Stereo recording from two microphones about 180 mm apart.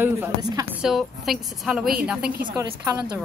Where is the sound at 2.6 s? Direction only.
15° right (ahead or behind).